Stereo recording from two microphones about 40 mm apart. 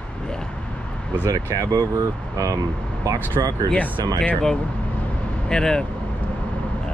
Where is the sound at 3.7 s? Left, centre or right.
Left.